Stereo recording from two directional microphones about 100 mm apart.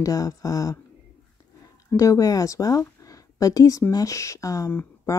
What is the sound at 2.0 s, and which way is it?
Speech, 35° left (ahead or behind).